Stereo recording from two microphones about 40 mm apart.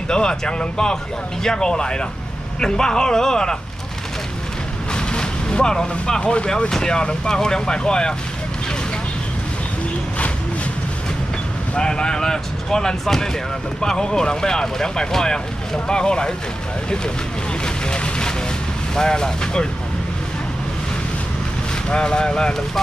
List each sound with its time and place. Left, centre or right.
0.1 s speech: left
4.9 s vehicle: left
6.3 s speech: left
11.7 s speech: centre
17.8 s vehicle: left
18.9 s speech: centre
21.8 s speech: left